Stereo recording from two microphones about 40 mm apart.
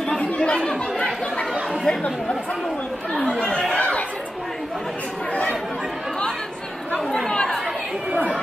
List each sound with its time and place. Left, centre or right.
0.2 s chatter: left
1.9 s speech: left
3.2 s chatter: left
3.7 s chatter: left
5.3 s chatter: left
7.1 s chatter: centre